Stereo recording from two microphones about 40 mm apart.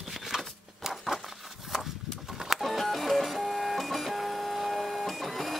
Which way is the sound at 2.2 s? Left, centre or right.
Centre.